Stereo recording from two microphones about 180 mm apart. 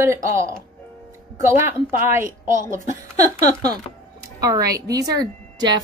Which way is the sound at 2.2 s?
45° right (ahead or behind).